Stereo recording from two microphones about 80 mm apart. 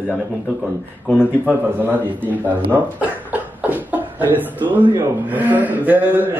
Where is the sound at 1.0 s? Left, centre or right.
Centre.